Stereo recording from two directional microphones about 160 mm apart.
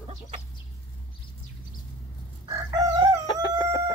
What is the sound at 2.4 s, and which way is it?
Chicken, 25° right (ahead or behind).